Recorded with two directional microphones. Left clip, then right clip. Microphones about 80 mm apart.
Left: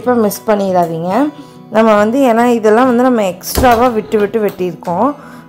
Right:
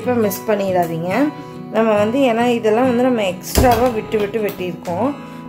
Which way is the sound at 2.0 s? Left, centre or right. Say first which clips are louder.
Left 5 dB; left.